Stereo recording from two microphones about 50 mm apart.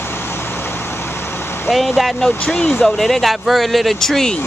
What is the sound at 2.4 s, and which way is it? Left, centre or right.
Speech, left.